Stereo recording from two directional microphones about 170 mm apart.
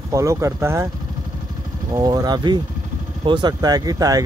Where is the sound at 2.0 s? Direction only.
20° right (ahead or behind).